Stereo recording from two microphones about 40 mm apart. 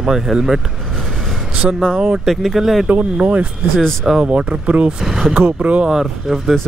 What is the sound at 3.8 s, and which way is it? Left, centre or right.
Speech, centre.